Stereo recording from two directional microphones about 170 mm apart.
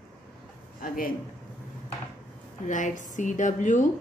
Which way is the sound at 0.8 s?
55° left (ahead or behind).